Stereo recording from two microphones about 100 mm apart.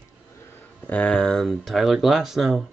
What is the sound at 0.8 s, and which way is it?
Speech, 10° left (ahead or behind).